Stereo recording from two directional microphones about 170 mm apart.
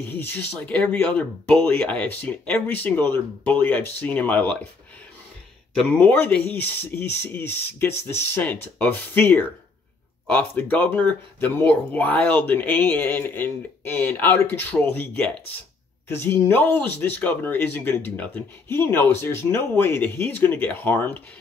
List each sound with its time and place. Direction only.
0.0 s speech: 10° left (ahead or behind)
5.8 s speech: 10° left (ahead or behind)